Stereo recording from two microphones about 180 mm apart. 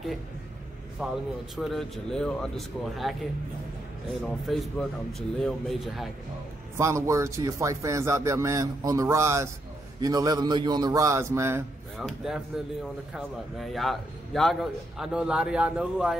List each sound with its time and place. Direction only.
1.0 s a man's voice: 5° right (ahead or behind)
4.2 s a man's voice: centre (ahead or behind)
6.8 s a man's voice: 15° right (ahead or behind)
12.0 s a man's voice: centre (ahead or behind)